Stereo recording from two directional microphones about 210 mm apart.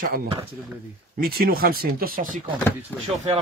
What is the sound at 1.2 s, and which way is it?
Speech, 45° right (ahead or behind).